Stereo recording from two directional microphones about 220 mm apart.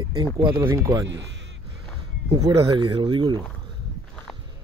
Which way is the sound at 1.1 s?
55° right (ahead or behind).